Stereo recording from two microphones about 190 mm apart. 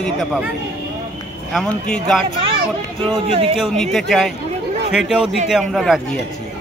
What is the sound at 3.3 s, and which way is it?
Speech, 30° right (ahead or behind).